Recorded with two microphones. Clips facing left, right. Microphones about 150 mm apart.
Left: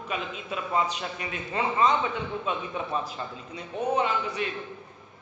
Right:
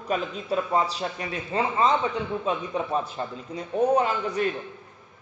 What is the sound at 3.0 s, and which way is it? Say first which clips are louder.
A man's voice: right 4 dB; 35° right (ahead or behind).